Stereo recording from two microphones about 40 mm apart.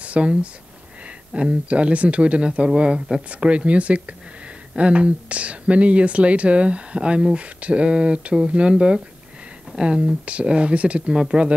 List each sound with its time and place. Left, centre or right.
0.0 s speech: right